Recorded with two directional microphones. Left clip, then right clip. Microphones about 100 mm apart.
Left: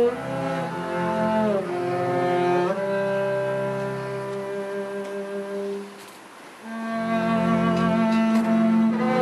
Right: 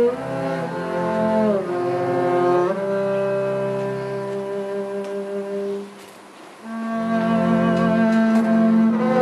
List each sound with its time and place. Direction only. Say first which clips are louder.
0.4 s cello: right 3 dB; 5° left (ahead or behind)
7.1 s cello: right 3 dB; 5° left (ahead or behind)